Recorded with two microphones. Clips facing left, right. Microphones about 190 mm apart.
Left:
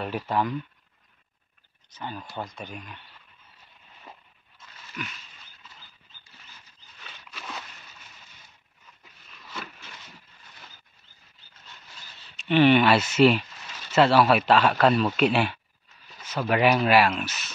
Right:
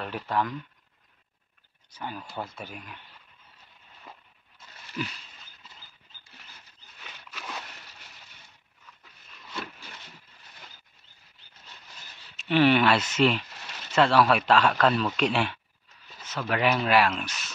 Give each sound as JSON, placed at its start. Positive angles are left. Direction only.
{"t": 0.0, "sound": "speech", "side_deg": 10}
{"t": 1.9, "sound": "speech", "side_deg": -10}
{"t": 5.0, "sound": "a sound", "side_deg": -30}
{"t": 12.4, "sound": "speech", "side_deg": 0}